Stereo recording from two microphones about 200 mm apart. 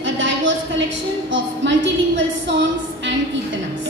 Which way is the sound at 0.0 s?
65° right (ahead or behind).